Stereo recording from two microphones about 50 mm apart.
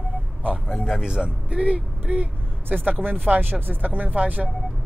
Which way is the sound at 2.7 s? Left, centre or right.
Right.